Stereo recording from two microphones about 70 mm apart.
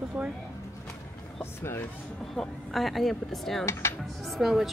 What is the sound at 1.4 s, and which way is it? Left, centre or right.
Speech, left.